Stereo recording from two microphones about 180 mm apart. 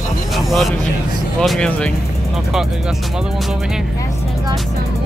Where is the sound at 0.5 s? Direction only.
Centre (ahead or behind).